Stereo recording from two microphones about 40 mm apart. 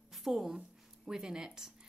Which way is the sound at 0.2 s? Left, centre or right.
Centre.